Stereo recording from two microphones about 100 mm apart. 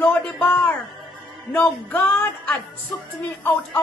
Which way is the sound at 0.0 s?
20° left (ahead or behind).